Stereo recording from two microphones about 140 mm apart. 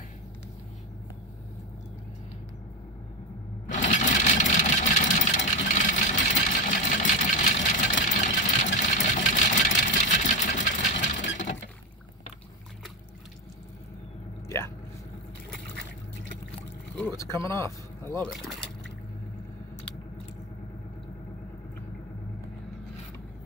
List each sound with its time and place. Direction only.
3.6 s sewing machine: 60° left (ahead or behind)
17.0 s a sound: 20° left (ahead or behind)
18.2 s speech: centre (ahead or behind)